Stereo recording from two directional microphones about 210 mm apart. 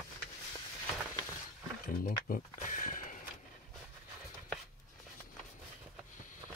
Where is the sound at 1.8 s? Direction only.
45° left (ahead or behind).